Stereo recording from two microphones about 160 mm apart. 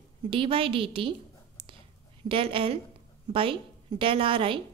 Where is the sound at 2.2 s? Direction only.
35° right (ahead or behind).